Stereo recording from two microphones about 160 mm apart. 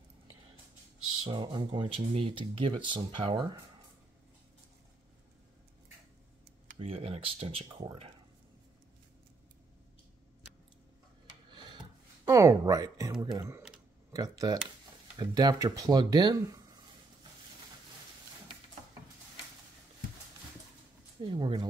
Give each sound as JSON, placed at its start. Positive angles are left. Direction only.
{"t": 1.2, "sound": "speech", "side_deg": -30}
{"t": 6.8, "sound": "speech", "side_deg": -40}
{"t": 11.2, "sound": "a sound", "side_deg": -30}
{"t": 13.2, "sound": "speech", "side_deg": -20}
{"t": 21.2, "sound": "speech", "side_deg": -30}